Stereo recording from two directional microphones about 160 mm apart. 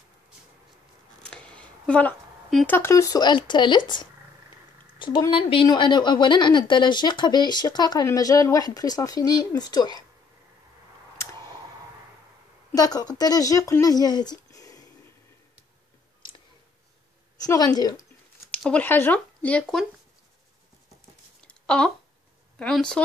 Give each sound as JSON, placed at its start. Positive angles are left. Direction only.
{"t": 1.2, "sound": "speech", "side_deg": 5}
{"t": 4.9, "sound": "a sound", "side_deg": 30}
{"t": 5.3, "sound": "a woman's voice", "side_deg": 35}
{"t": 12.7, "sound": "a woman's voice", "side_deg": 25}
{"t": 17.4, "sound": "a woman's voice", "side_deg": 25}
{"t": 18.6, "sound": "speech", "side_deg": 10}
{"t": 21.5, "sound": "a sound", "side_deg": 5}
{"t": 22.6, "sound": "speech", "side_deg": 5}